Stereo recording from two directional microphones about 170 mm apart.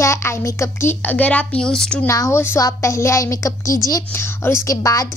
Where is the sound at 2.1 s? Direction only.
15° left (ahead or behind).